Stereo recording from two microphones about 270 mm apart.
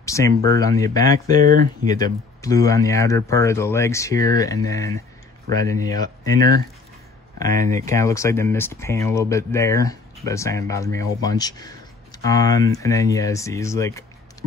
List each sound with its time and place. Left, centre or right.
0.0 s a sound: centre
0.5 s speech: centre
1.3 s speech: right
1.9 s speech: centre
7.4 s speech: right
7.7 s speech: centre